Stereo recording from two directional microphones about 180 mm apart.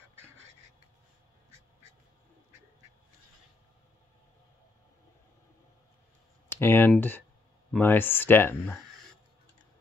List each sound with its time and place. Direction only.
1.5 s duck: 15° right (ahead or behind)
6.5 s speech: 10° left (ahead or behind)